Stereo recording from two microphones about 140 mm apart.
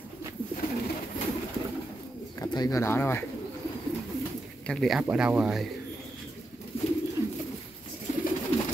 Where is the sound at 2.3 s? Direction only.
30° left (ahead or behind).